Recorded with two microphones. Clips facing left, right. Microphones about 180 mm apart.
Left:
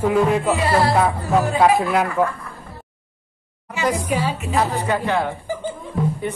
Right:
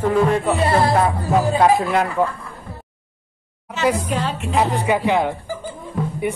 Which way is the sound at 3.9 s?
10° left (ahead or behind).